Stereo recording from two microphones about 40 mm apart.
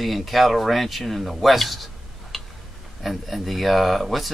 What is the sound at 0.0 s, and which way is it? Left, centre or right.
Speech, centre.